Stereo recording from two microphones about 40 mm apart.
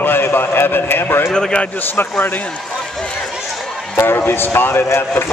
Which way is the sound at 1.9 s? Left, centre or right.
Left.